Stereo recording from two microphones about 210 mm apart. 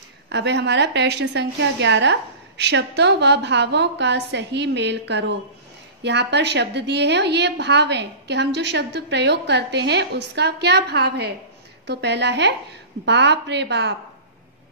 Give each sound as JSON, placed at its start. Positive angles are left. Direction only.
{"t": 0.3, "sound": "a woman's voice", "side_deg": -55}